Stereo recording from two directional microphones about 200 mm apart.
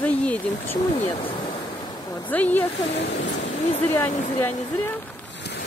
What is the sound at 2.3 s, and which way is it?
Speech, 10° left (ahead or behind).